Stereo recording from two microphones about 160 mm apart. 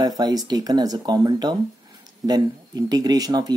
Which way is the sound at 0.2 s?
25° right (ahead or behind).